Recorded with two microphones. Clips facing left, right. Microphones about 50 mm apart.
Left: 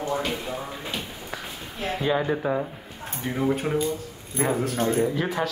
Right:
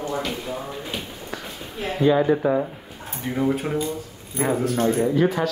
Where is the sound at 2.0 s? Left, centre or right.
Centre.